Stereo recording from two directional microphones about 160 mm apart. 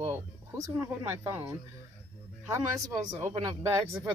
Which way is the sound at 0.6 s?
15° right (ahead or behind).